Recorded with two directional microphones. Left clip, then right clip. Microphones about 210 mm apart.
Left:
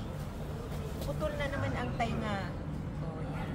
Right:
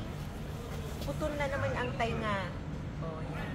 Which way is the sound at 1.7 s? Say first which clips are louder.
Right 1 dB; 40° right (ahead or behind).